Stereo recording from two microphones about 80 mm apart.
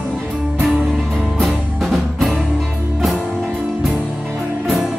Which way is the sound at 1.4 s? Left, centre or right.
Centre.